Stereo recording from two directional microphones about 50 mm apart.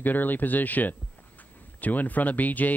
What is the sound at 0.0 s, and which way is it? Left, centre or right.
Speech, left.